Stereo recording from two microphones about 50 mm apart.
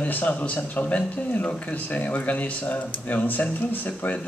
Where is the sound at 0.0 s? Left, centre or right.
Left.